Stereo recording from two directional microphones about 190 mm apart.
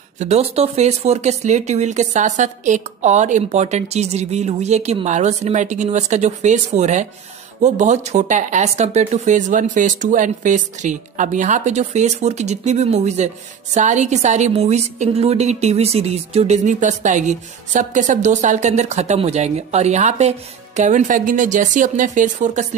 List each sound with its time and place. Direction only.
0.2 s a woman's voice: 35° right (ahead or behind)